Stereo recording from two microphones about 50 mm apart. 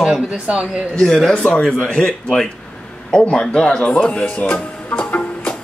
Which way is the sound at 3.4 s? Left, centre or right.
Centre.